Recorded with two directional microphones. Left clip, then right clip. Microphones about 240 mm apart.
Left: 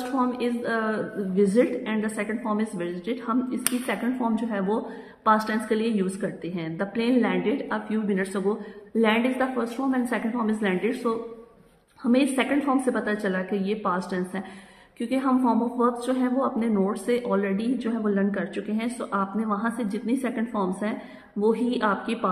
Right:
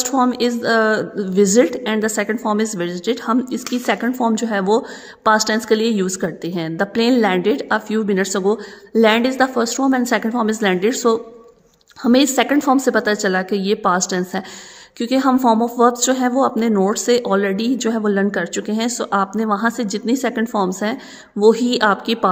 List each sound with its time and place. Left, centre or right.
0.2 s a woman's voice: right